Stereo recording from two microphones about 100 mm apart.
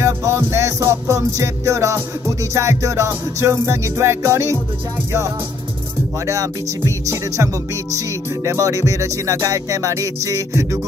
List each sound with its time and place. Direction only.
0.0 s music: 30° right (ahead or behind)
6.2 s music: 30° right (ahead or behind)
8.5 s music: 35° right (ahead or behind)